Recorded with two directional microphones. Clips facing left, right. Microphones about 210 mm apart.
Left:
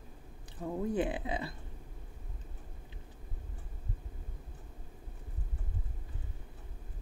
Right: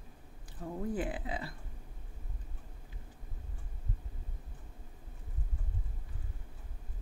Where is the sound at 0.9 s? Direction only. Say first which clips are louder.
Left 4 dB; 20° left (ahead or behind).